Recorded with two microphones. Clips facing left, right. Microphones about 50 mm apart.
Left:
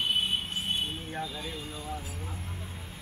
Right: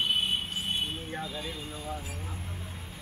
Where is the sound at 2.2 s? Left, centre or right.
Centre.